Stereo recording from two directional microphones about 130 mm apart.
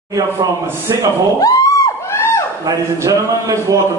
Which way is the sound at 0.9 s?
25° right (ahead or behind).